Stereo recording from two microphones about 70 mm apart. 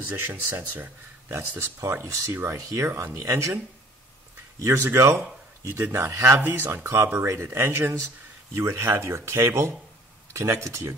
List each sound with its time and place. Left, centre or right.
0.0 s speech: right
1.3 s speech: right
4.6 s speech: right